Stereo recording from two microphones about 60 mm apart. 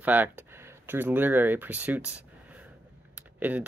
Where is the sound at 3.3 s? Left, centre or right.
Right.